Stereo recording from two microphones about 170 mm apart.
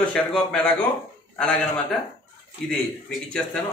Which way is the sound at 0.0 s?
5° left (ahead or behind).